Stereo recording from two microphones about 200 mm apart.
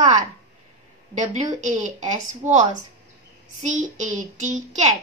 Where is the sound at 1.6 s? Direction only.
40° right (ahead or behind).